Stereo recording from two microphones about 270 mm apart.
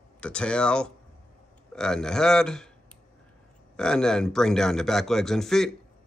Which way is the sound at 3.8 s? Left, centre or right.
Centre.